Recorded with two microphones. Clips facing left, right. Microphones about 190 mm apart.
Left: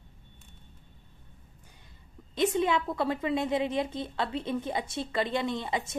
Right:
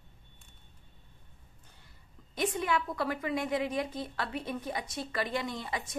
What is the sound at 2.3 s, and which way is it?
A woman's voice, 25° left (ahead or behind).